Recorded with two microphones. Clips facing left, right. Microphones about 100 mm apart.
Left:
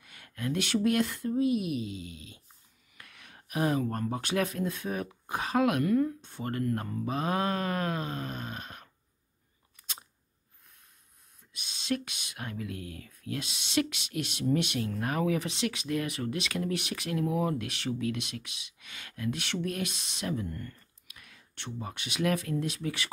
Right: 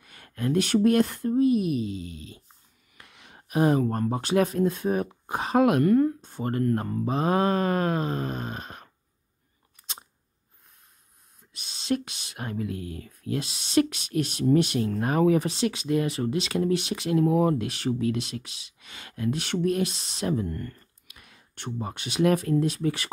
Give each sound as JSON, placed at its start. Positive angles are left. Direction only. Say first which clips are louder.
{"t": 0.0, "sound": "a sound", "louder": "right 6 dB", "side_deg": -40}
{"t": 0.8, "sound": "speech", "louder": "right 6 dB", "side_deg": -40}
{"t": 3.0, "sound": "speech", "louder": "right 2 dB", "side_deg": -25}
{"t": 5.9, "sound": "speech", "louder": "right 6 dB", "side_deg": -45}
{"t": 11.5, "sound": "speech", "louder": "right 5 dB", "side_deg": -35}
{"t": 17.3, "sound": "speech", "louder": "right 7 dB", "side_deg": -40}
{"t": 20.4, "sound": "speech", "louder": "right 6 dB", "side_deg": -55}
{"t": 21.1, "sound": "speech", "louder": "right 1 dB", "side_deg": -30}